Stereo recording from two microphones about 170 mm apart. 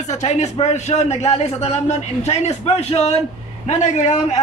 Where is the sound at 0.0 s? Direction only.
40° left (ahead or behind).